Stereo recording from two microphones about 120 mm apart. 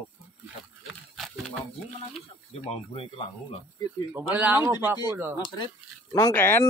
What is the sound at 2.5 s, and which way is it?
Speech, 55° left (ahead or behind).